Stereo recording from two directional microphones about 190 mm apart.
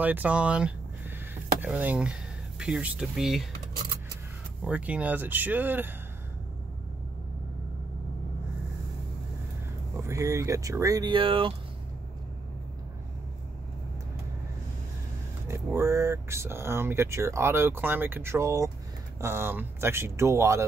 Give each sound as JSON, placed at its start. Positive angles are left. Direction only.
{"t": 0.0, "sound": "speech", "side_deg": -10}
{"t": 1.3, "sound": "a sound", "side_deg": -10}
{"t": 2.6, "sound": "speech", "side_deg": -5}
{"t": 4.6, "sound": "speech", "side_deg": -5}
{"t": 9.9, "sound": "speech", "side_deg": -15}
{"t": 15.4, "sound": "speech", "side_deg": -15}